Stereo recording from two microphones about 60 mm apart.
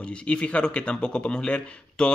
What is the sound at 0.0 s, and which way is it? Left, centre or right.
A man's voice, centre.